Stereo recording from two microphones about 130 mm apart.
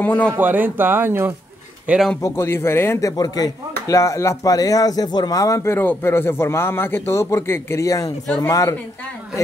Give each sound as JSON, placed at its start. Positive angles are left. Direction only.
{"t": 0.0, "sound": "speech", "side_deg": 15}
{"t": 0.3, "sound": "speech", "side_deg": -15}
{"t": 2.2, "sound": "speech", "side_deg": 20}